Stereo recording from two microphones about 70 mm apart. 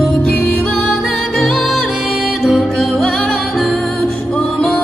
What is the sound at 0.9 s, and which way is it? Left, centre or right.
Music, centre.